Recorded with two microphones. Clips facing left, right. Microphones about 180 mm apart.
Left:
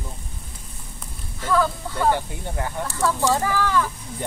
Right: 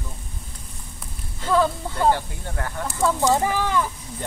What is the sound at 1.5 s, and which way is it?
Speech, 25° right (ahead or behind).